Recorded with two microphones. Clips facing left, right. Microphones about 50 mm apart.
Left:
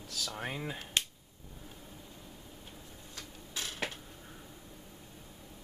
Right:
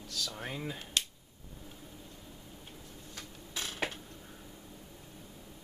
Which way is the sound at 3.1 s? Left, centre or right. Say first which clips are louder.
Even; right.